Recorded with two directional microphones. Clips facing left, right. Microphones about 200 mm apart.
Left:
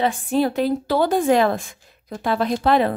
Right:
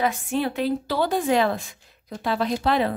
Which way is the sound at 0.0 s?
35° left (ahead or behind).